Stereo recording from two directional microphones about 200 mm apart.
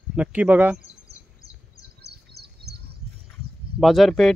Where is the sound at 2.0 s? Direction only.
55° right (ahead or behind).